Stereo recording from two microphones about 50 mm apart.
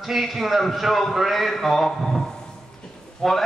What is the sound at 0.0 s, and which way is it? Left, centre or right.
A man's voice, centre.